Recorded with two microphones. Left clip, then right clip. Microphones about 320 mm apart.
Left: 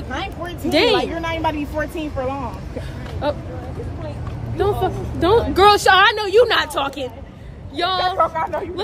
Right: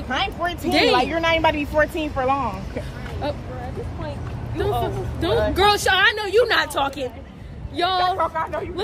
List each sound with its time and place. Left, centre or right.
0.1 s a sound: right
0.9 s a woman's voice: right
3.2 s a woman's voice: centre
4.6 s a woman's voice: centre
8.2 s speech: left